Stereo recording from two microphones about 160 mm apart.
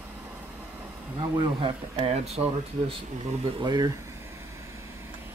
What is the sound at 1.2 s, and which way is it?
Speech, 30° right (ahead or behind).